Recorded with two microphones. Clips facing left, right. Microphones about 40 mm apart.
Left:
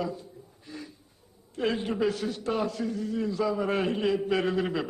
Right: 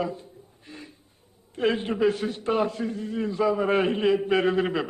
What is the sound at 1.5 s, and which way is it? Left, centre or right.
A man's voice, right.